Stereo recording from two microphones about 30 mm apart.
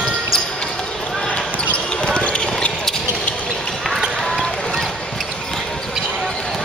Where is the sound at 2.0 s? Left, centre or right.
Left.